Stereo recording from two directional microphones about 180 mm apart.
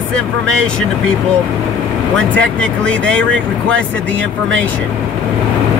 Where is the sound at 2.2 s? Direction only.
5° left (ahead or behind).